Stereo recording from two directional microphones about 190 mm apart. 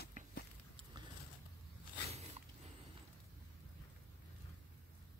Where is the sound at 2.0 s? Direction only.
35° right (ahead or behind).